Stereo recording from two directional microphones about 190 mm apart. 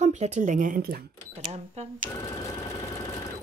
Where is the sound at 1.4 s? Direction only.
35° right (ahead or behind).